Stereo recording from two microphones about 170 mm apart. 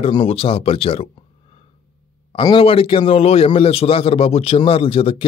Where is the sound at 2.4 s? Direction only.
30° left (ahead or behind).